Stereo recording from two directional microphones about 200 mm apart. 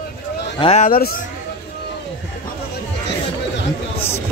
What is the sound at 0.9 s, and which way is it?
Speech, 50° left (ahead or behind).